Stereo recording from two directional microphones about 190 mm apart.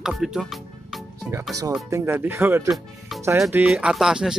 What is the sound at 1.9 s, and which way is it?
Speech, 15° right (ahead or behind).